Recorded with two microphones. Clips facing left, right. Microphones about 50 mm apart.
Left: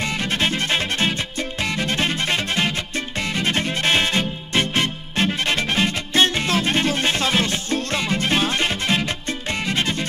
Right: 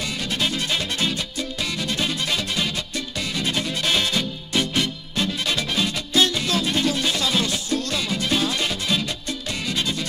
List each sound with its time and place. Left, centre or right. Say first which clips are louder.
0.0 s music: left 3 dB; left